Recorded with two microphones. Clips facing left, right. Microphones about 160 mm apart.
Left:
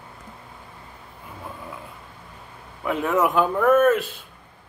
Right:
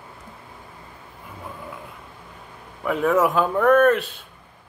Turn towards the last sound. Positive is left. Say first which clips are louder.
# right 1 dB
turn(degrees=5)  # may be behind; listen again after turning